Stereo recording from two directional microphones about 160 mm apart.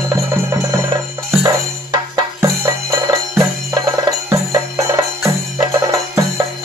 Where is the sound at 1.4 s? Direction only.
20° right (ahead or behind).